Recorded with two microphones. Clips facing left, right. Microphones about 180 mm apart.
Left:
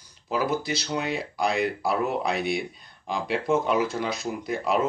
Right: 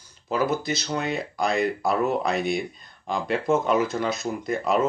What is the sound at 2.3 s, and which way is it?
Speech, 45° right (ahead or behind).